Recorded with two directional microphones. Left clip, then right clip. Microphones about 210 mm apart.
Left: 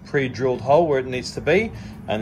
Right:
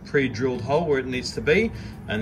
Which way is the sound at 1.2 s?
40° left (ahead or behind).